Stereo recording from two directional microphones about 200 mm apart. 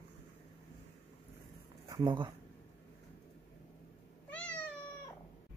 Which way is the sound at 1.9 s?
25° right (ahead or behind).